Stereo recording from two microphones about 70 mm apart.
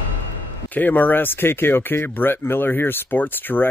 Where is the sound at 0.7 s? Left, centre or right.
Left.